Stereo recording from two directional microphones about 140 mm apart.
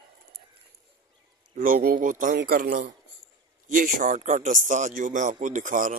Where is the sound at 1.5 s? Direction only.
90° right.